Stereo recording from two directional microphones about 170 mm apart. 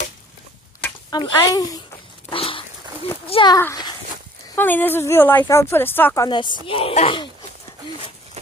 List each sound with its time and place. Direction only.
1.1 s speech: 25° left (ahead or behind)
2.2 s dog: 30° left (ahead or behind)
3.3 s speech: 30° left (ahead or behind)
3.5 s speech: 15° left (ahead or behind); by 7.2 s 35° left (ahead or behind)